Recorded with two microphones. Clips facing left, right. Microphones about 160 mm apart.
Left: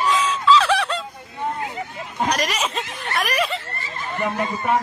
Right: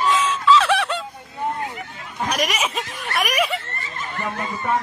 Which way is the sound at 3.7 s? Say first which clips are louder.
Left 3 dB; 20° left (ahead or behind).